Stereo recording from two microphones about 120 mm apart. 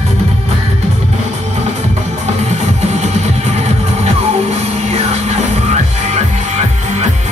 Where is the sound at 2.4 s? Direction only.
70° right (ahead or behind).